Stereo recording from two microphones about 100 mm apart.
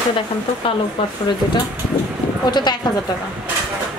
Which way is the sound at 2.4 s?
45° left (ahead or behind).